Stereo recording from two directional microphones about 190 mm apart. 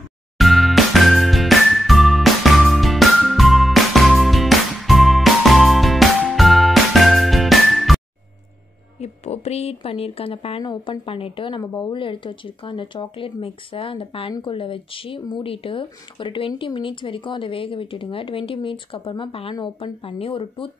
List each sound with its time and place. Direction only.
0.4 s music: centre (ahead or behind)
9.0 s speech: 35° left (ahead or behind)